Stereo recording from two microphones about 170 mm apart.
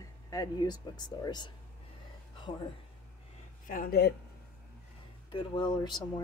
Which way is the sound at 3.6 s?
55° left (ahead or behind).